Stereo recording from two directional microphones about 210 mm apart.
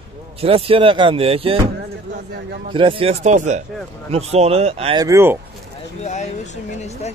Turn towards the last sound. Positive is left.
turn(degrees=30)  # may be behind; listen again after turning